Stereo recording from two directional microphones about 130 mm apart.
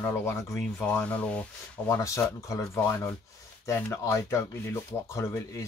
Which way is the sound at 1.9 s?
25° left (ahead or behind).